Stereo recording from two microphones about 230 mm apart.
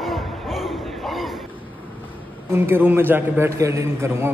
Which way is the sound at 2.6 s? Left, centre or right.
Centre.